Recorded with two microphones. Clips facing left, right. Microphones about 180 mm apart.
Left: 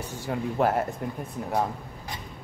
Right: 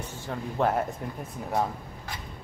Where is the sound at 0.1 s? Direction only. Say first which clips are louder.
Left 4 dB; 10° left (ahead or behind).